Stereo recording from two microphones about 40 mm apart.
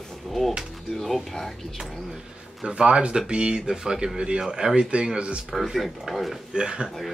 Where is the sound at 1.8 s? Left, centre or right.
Centre.